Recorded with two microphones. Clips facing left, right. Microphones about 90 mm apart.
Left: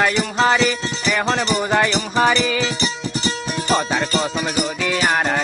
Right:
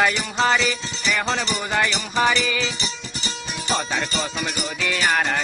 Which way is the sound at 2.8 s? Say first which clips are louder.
Left 8 dB; 60° left (ahead or behind).